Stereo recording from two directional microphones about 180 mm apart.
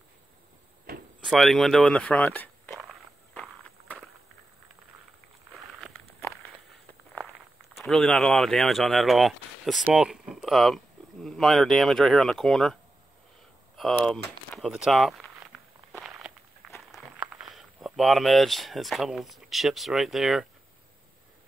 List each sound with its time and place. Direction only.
0.9 s door: 55° right (ahead or behind)
1.2 s a sound: centre (ahead or behind)
7.7 s speech: centre (ahead or behind)
13.7 s speech: centre (ahead or behind)
14.5 s walk: centre (ahead or behind)
17.2 s speech: 5° right (ahead or behind)